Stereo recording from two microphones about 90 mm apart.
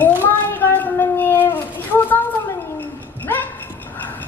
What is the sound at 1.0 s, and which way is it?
Shofar, 25° left (ahead or behind).